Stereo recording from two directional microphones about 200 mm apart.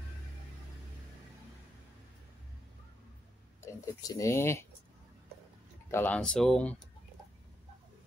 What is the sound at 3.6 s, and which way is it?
Speech, 15° left (ahead or behind).